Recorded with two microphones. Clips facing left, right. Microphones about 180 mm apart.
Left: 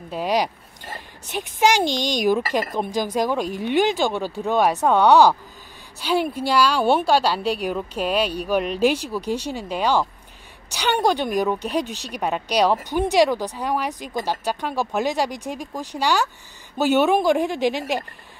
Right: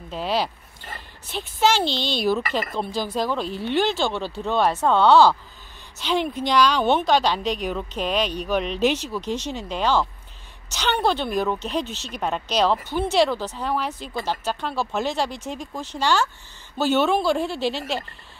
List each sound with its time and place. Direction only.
0.1 s a woman's voice: 15° left (ahead or behind)